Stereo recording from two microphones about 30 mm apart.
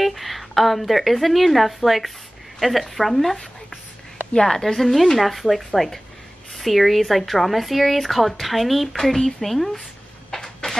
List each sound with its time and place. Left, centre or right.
0.0 s a woman's voice: centre
4.5 s a woman's voice: centre
8.9 s a woman's voice: centre
10.3 s a sound: centre